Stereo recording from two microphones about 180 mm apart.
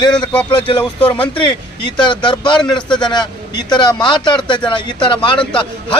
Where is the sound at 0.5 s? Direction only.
25° left (ahead or behind).